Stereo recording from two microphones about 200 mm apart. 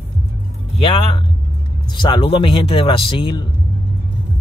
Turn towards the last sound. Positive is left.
turn(degrees=25)  # may be behind; listen again after turning